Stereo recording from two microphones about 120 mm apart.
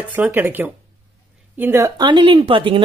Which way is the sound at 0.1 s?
15° right (ahead or behind).